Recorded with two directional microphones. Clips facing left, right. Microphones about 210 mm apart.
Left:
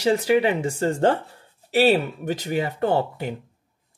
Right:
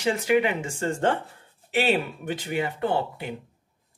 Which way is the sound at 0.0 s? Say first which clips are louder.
Left 3 dB; 35° left (ahead or behind).